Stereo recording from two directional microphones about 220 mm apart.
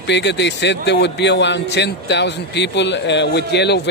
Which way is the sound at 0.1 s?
50° left (ahead or behind).